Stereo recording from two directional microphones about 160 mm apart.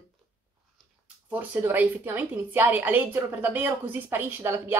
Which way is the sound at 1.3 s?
10° right (ahead or behind).